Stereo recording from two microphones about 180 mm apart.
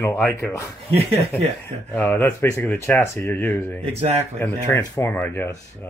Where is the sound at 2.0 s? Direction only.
10° left (ahead or behind).